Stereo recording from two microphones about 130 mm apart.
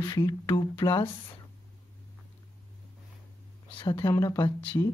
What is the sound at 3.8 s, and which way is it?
Speech, 35° left (ahead or behind).